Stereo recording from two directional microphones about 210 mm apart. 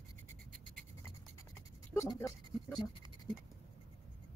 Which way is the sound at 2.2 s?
15° left (ahead or behind).